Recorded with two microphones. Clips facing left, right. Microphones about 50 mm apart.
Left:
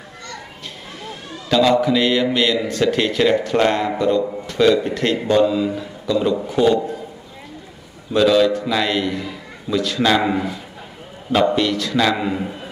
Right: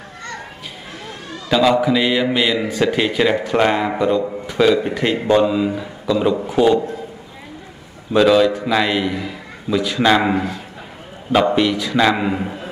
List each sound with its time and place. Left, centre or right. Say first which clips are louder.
1.0 s a man's voice: right 1 dB; centre
8.1 s a man's voice: right 1 dB; centre